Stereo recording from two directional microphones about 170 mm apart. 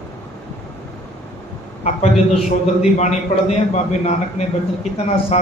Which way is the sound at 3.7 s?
40° left (ahead or behind).